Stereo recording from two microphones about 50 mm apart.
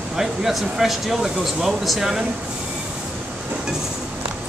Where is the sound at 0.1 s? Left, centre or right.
Centre.